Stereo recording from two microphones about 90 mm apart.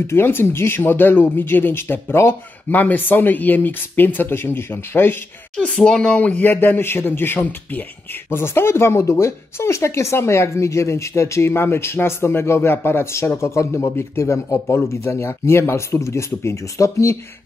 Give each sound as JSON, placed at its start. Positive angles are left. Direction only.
{"t": 0.0, "sound": "speech", "side_deg": 25}